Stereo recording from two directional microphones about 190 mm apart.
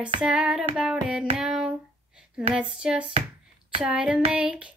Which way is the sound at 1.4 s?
Centre (ahead or behind).